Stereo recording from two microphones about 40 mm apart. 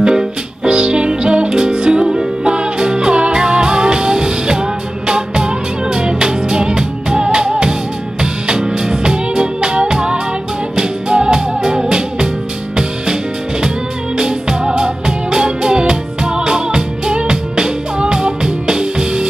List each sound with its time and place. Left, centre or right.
0.0 s music: centre